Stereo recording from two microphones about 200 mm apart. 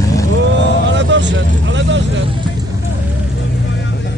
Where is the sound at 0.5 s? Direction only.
65° right (ahead or behind).